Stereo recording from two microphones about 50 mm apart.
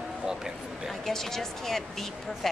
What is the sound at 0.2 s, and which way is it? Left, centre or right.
Speech, centre.